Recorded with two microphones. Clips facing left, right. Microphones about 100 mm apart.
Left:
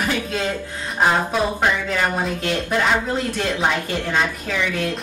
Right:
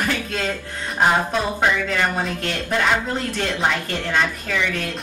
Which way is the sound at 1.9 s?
5° left (ahead or behind).